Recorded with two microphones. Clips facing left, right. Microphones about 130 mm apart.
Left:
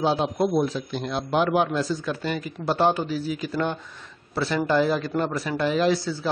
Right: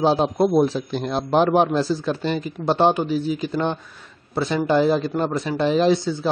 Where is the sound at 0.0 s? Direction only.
30° right (ahead or behind).